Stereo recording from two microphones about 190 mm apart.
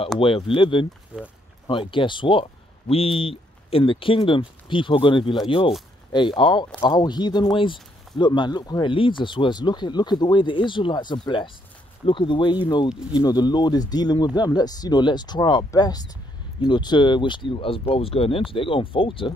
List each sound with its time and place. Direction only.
0.2 s speech: 25° left (ahead or behind)
1.1 s speech: 5° right (ahead or behind)
1.7 s speech: 25° left (ahead or behind)